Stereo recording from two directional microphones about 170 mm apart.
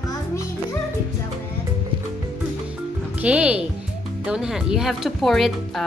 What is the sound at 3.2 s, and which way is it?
Speech, 5° right (ahead or behind).